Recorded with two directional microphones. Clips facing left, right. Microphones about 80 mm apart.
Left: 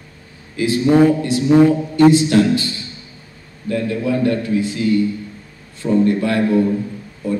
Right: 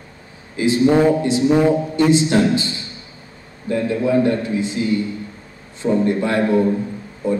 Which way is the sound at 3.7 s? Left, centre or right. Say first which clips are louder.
Right 1 dB; right.